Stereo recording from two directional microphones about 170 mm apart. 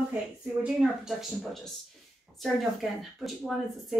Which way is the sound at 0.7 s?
5° right (ahead or behind).